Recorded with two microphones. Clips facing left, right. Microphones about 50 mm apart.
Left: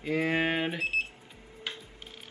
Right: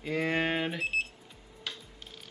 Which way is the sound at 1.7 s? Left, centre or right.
Left.